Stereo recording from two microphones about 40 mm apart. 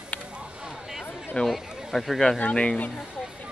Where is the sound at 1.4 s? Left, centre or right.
Left.